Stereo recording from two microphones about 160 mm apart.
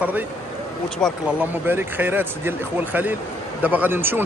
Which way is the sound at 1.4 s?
15° right (ahead or behind).